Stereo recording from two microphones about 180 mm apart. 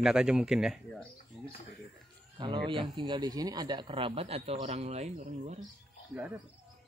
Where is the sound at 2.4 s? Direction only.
25° right (ahead or behind).